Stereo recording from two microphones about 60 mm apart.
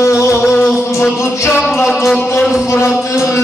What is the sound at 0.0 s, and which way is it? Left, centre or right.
Music, left.